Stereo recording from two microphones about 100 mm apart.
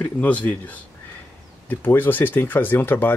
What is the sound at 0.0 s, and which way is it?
Speech, 15° left (ahead or behind).